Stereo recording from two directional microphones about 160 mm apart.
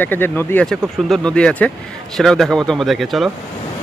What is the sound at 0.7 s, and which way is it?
Speech, centre (ahead or behind).